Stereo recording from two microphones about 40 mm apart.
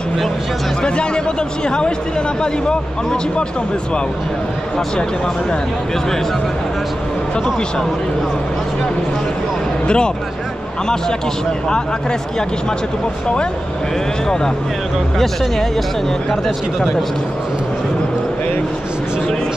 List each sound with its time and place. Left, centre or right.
0.8 s speech: left
9.8 s speech: left
14.2 s speech: centre